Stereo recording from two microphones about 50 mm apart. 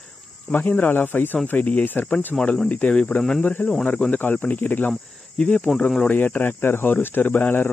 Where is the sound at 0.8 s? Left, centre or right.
Left.